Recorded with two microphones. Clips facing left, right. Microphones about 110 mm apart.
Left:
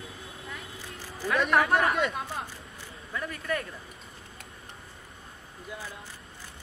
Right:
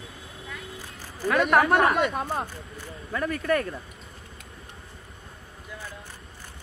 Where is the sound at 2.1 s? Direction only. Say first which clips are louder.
Right 6 dB; 45° right (ahead or behind).